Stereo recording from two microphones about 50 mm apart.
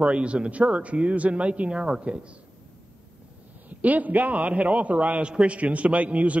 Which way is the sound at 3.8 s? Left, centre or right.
Right.